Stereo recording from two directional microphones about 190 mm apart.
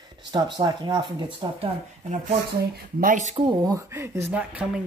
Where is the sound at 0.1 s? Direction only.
20° right (ahead or behind).